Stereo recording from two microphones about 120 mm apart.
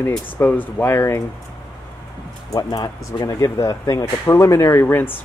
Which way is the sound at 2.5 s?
30° left (ahead or behind).